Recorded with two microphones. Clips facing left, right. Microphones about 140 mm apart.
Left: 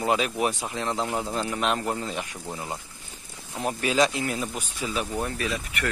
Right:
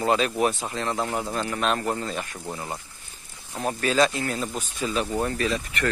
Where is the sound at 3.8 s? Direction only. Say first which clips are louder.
Right 1 dB; 15° left (ahead or behind).